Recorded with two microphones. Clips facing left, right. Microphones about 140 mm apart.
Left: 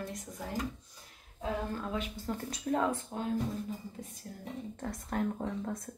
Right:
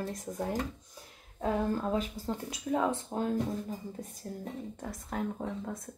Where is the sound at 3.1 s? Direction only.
45° right (ahead or behind).